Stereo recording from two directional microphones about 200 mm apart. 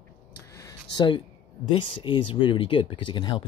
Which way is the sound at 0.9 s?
25° left (ahead or behind).